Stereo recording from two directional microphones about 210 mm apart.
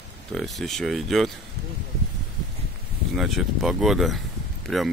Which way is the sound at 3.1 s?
Centre (ahead or behind).